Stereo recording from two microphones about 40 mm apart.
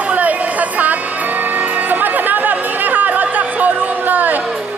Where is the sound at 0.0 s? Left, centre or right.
Right.